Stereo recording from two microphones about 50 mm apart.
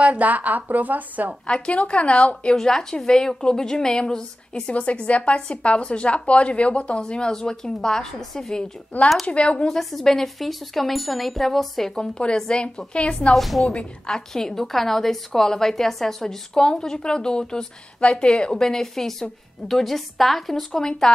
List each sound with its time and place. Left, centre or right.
0.0 s speech: right
1.5 s a woman's voice: left
2.5 s a woman's voice: centre
9.2 s a woman's voice: left
9.7 s a woman's voice: centre; by 13.3 s left
13.3 s a woman's voice: centre
13.7 s a woman's voice: centre